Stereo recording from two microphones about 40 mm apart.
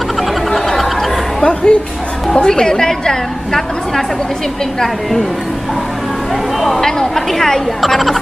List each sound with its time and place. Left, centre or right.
0.5 s a sound: centre
1.4 s a woman's voice: left
6.8 s a woman's voice: centre